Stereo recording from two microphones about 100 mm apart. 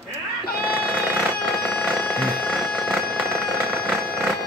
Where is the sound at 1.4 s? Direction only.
10° left (ahead or behind).